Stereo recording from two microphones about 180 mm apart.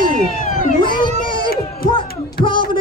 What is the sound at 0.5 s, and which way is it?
Cat, 45° left (ahead or behind).